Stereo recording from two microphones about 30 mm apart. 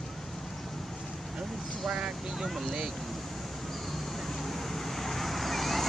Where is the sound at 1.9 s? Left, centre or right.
Right.